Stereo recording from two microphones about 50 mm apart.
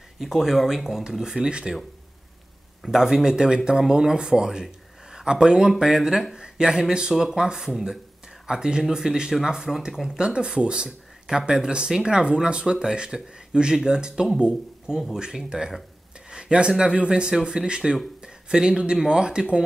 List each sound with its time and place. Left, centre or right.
0.2 s speech: centre
2.9 s speech: centre
10.0 s speech: centre